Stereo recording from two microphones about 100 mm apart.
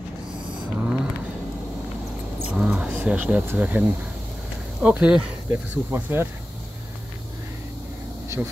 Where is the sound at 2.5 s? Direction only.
10° right (ahead or behind).